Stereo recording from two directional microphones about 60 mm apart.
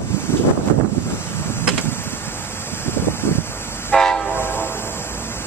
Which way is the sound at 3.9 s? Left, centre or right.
Centre.